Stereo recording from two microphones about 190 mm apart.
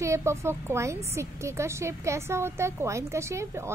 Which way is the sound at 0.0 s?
15° right (ahead or behind).